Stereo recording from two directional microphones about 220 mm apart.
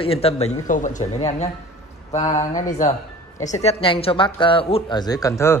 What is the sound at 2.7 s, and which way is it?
Speech, 35° left (ahead or behind).